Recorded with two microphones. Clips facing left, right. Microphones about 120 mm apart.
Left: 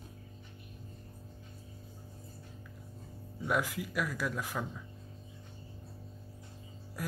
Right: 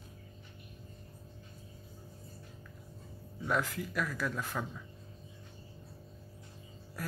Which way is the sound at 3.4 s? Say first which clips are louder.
Left 1 dB; 10° left (ahead or behind).